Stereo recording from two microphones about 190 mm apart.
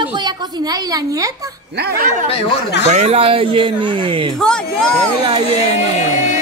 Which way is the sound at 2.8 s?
35° right (ahead or behind).